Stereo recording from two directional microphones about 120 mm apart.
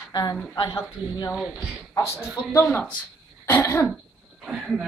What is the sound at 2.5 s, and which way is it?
A woman's voice, 15° left (ahead or behind).